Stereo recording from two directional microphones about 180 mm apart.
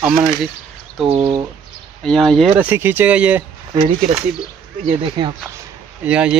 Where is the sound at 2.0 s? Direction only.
Centre (ahead or behind).